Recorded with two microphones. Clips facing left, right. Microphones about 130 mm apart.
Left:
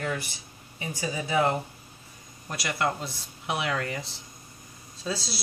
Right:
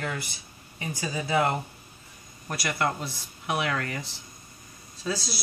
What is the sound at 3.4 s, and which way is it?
Speech, 25° left (ahead or behind).